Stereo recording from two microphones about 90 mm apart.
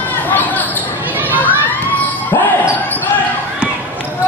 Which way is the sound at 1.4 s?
20° left (ahead or behind).